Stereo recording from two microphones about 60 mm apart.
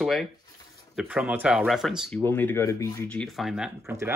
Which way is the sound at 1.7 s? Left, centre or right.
Centre.